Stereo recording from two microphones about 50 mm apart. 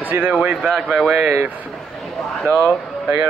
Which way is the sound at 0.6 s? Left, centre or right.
Centre.